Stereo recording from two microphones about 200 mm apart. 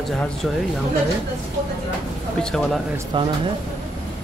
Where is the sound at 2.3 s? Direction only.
5° left (ahead or behind).